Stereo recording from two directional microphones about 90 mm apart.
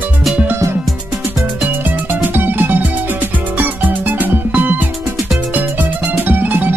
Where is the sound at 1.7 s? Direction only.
20° right (ahead or behind).